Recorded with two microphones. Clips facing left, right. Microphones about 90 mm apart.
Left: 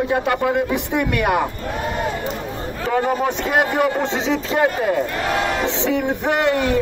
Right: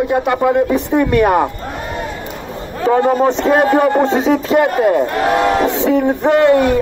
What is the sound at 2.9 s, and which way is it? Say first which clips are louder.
Speech: right 7 dB; 40° right (ahead or behind).